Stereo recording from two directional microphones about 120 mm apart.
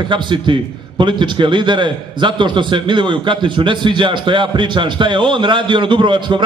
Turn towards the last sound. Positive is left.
turn(degrees=-40)  # may be behind; listen again after turning